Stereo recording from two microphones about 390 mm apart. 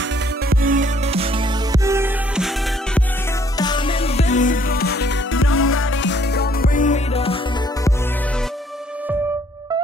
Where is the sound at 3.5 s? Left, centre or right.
Centre.